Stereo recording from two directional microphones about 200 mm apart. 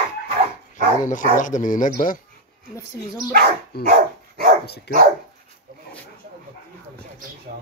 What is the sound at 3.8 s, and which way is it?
Dog, 50° right (ahead or behind).